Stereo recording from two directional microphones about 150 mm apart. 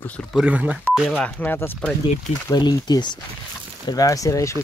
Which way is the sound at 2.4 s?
30° left (ahead or behind).